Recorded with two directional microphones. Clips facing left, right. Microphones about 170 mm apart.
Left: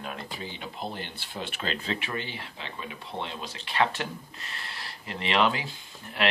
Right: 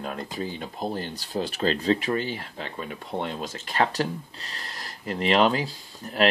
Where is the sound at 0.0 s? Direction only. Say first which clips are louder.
Right 6 dB; 40° right (ahead or behind).